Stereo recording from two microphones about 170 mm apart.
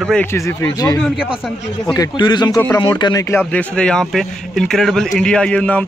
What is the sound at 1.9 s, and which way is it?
A man's voice, 25° left (ahead or behind).